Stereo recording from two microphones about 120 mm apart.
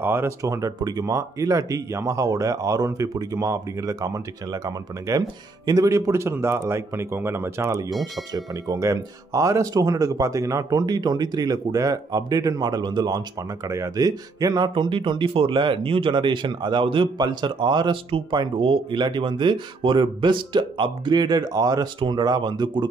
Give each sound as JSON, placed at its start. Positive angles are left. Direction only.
{"t": 0.0, "sound": "speech", "side_deg": -20}
{"t": 14.7, "sound": "speech", "side_deg": -45}